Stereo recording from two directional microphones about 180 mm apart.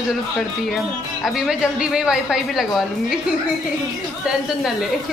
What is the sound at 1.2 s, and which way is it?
Speech, centre (ahead or behind).